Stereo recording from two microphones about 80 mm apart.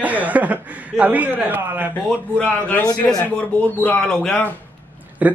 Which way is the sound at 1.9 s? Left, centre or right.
Centre.